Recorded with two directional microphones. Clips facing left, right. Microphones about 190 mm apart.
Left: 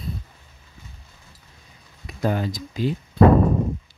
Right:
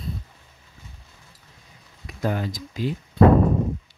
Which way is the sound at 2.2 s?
30° left (ahead or behind).